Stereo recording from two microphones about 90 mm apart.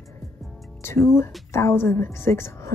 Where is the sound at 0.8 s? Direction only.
30° left (ahead or behind).